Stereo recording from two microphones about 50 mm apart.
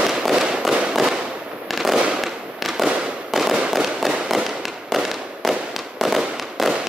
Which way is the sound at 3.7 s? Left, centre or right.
Centre.